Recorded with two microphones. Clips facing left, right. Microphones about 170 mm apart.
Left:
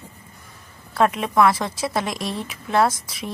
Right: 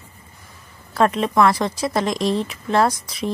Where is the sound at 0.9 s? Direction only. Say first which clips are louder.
Right 1 dB; centre (ahead or behind).